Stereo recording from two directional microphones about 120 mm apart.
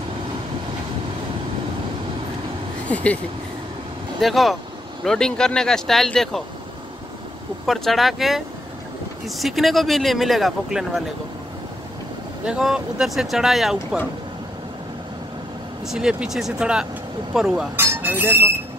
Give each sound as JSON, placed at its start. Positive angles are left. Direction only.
{"t": 2.9, "sound": "speech", "side_deg": 10}
{"t": 4.2, "sound": "speech", "side_deg": 0}
{"t": 7.6, "sound": "speech", "side_deg": 0}
{"t": 12.4, "sound": "speech", "side_deg": -5}
{"t": 15.9, "sound": "speech", "side_deg": -5}
{"t": 17.7, "sound": "speech", "side_deg": -15}